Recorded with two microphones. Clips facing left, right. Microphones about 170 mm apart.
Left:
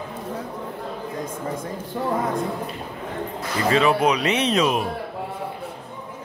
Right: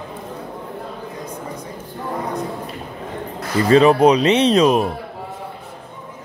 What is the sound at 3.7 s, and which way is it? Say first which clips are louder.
Speech: right 7 dB; 35° right (ahead or behind).